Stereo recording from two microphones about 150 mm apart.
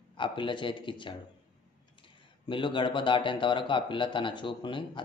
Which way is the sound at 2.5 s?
35° left (ahead or behind).